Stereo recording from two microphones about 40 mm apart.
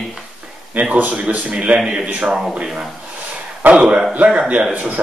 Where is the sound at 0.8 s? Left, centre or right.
Right.